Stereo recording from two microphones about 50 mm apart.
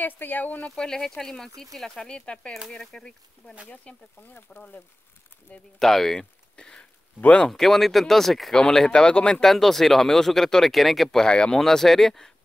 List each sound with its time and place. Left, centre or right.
0.0 s speech: left
0.6 s speech: left
0.8 s speech: centre
2.0 s speech: centre
3.6 s speech: left
4.5 s speech: left
5.8 s speech: centre
6.5 s a sound: centre
7.4 s speech: centre
9.5 s speech: centre